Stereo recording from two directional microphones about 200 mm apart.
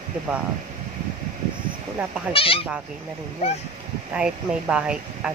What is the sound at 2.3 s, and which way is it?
Speech, 25° left (ahead or behind).